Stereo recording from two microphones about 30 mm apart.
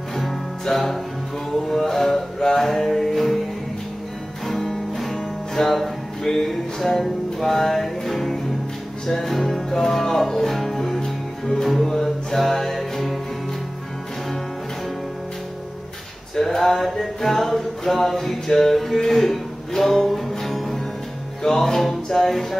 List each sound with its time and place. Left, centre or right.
0.2 s music: centre
4.5 s music: centre
11.0 s music: left; by 13.2 s centre
16.3 s music: centre
21.4 s music: centre